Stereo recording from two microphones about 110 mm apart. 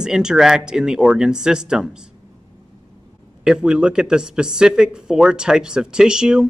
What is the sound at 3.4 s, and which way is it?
Speech, 5° right (ahead or behind).